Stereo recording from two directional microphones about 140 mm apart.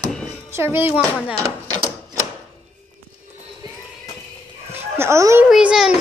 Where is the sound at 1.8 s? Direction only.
25° right (ahead or behind).